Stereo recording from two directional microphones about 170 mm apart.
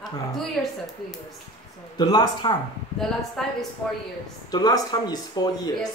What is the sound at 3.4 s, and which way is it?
Speech, centre (ahead or behind).